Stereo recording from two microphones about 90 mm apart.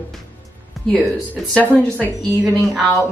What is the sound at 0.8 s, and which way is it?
Music, centre (ahead or behind).